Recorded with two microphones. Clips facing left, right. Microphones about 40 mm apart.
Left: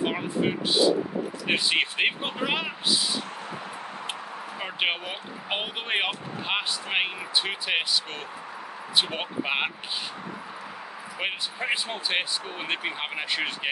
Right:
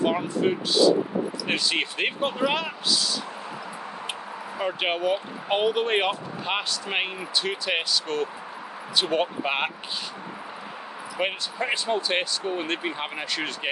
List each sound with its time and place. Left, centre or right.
0.0 s speech: centre
4.6 s speech: centre
11.1 s speech: centre